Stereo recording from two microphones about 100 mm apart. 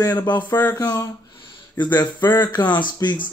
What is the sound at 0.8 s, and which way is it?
Speech, 40° left (ahead or behind).